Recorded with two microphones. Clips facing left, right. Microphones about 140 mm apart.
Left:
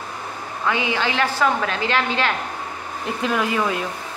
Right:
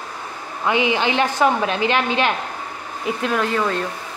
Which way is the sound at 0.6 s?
20° right (ahead or behind).